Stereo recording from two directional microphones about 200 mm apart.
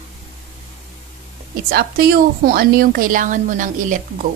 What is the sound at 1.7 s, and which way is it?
A woman's voice, 50° right (ahead or behind).